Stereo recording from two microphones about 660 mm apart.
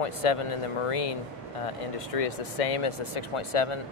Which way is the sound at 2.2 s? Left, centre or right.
Left.